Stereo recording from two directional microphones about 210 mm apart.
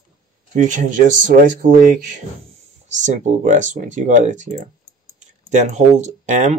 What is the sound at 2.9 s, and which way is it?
Speech, 35° right (ahead or behind).